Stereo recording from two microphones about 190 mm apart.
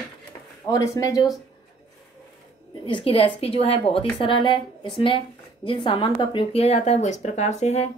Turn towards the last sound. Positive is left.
turn(degrees=35)  # may be behind; listen again after turning